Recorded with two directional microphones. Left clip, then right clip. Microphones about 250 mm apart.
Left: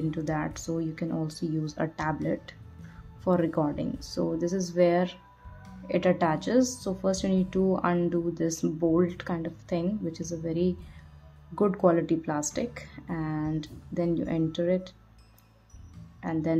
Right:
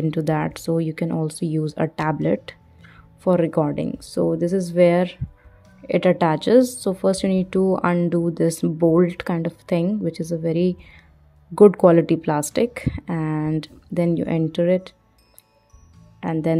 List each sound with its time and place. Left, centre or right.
0.1 s a woman's voice: right
16.2 s a woman's voice: right